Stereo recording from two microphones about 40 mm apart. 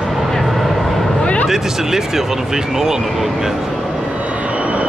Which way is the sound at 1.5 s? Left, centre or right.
Centre.